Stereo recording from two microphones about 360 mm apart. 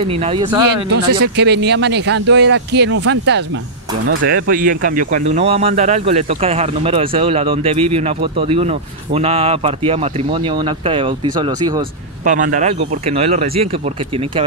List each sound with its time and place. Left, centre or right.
0.0 s speech: centre
1.2 s speech: right